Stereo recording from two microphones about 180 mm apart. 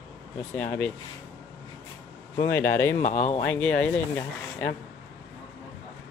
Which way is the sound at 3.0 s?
40° left (ahead or behind).